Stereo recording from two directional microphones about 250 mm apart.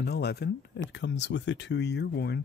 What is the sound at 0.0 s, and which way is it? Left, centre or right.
Speech, left.